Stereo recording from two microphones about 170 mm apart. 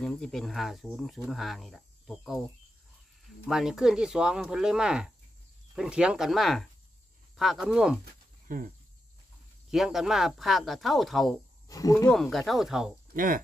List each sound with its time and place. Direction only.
0.0 s speech: 5° left (ahead or behind)
3.4 s speech: 5° right (ahead or behind)
8.0 s a sound: 55° right (ahead or behind)
9.7 s speech: centre (ahead or behind)
11.6 s speech: 20° left (ahead or behind)
12.1 s speech: centre (ahead or behind)
13.1 s speech: 55° right (ahead or behind)